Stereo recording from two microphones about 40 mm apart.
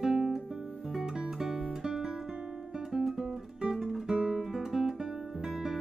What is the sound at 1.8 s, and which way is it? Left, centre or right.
Guitar, centre.